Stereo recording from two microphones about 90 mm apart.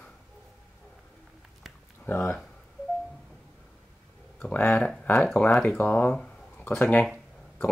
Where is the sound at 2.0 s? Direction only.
25° left (ahead or behind).